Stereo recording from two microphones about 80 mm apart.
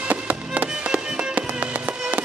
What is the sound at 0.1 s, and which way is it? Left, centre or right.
Music, centre.